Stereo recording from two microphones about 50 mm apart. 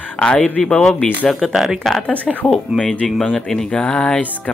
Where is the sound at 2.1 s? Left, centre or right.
Left.